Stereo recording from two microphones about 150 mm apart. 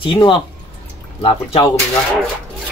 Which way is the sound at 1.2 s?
35° left (ahead or behind).